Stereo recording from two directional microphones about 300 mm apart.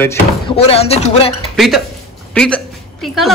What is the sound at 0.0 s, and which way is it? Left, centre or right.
Speech, centre.